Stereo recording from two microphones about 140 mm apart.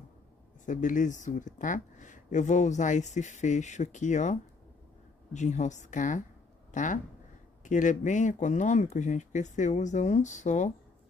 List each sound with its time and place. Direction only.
0.7 s speech: 65° left (ahead or behind)